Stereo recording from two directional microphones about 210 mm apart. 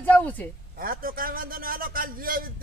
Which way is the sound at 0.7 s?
45° right (ahead or behind).